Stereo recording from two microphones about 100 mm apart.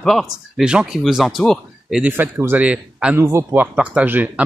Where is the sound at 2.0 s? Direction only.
20° right (ahead or behind).